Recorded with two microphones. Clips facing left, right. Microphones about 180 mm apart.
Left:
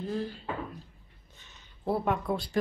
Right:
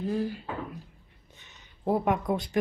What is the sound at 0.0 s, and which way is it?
Speech, 10° right (ahead or behind).